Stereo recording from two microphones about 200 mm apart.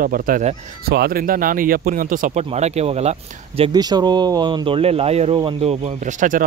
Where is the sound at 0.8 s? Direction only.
50° right (ahead or behind).